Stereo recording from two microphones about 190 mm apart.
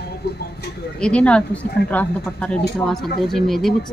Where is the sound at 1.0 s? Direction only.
5° left (ahead or behind).